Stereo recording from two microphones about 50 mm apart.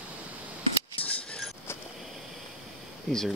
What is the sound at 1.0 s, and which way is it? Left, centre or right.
Scissors, left.